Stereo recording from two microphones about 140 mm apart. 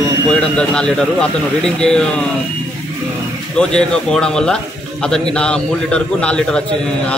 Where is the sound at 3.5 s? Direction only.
5° left (ahead or behind).